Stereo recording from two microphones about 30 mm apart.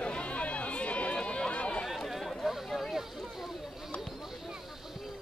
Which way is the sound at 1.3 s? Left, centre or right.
Left.